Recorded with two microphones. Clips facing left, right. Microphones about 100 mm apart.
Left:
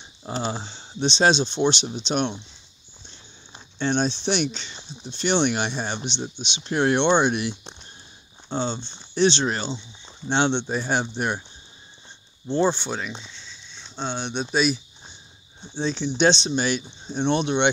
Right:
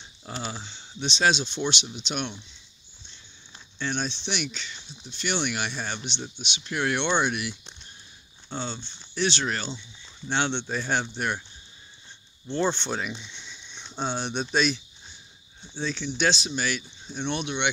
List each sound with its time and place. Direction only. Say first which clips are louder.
0.0 s speech: left 7 dB; 25° left (ahead or behind)
3.5 s a sound: left 7 dB; 30° left (ahead or behind)
4.2 s speech: left 8 dB; 35° left (ahead or behind)
12.6 s speech: left 3 dB; 10° left (ahead or behind)
13.3 s a sound: even; 15° right (ahead or behind)
13.8 s speech: even; 5° right (ahead or behind)
15.6 s speech: left 5 dB; 25° left (ahead or behind)